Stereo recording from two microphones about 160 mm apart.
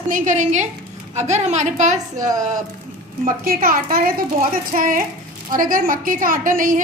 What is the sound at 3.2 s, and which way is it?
A woman's voice, 65° right (ahead or behind).